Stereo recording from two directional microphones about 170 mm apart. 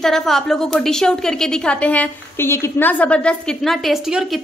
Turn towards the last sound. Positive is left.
turn(degrees=0)  # may be behind; listen again after turning